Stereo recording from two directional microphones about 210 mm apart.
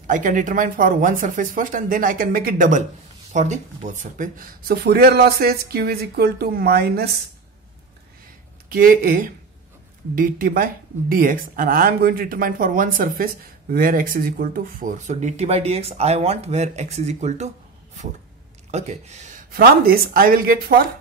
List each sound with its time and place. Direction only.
0.0 s speech: 40° right (ahead or behind)
8.6 s speech: 40° right (ahead or behind)
18.7 s speech: 30° right (ahead or behind)